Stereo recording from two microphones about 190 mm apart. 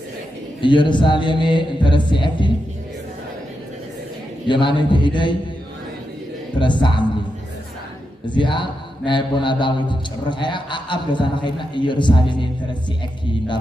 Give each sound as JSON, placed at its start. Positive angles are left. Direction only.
{"t": 0.6, "sound": "a man's voice", "side_deg": 25}
{"t": 4.5, "sound": "a man's voice", "side_deg": 25}
{"t": 6.6, "sound": "a man's voice", "side_deg": 25}
{"t": 8.3, "sound": "a man's voice", "side_deg": 25}